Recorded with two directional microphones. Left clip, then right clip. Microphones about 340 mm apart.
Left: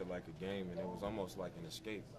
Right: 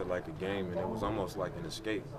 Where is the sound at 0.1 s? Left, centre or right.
Right.